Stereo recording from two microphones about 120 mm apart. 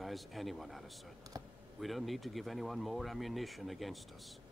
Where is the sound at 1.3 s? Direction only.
30° right (ahead or behind).